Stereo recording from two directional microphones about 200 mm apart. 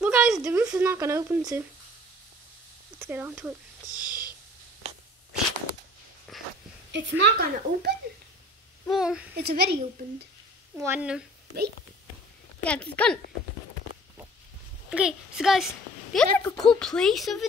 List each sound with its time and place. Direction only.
0.0 s a woman's voice: 5° right (ahead or behind)
3.0 s a woman's voice: 10° right (ahead or behind)
3.9 s a sound: 20° left (ahead or behind)
6.3 s a sound: centre (ahead or behind)
6.9 s a woman's voice: 55° right (ahead or behind)
8.9 s a woman's voice: 5° right (ahead or behind)
9.3 s a woman's voice: 55° right (ahead or behind)
10.8 s a woman's voice: 10° right (ahead or behind)
12.6 s a woman's voice: 5° left (ahead or behind)
14.9 s a woman's voice: 5° right (ahead or behind)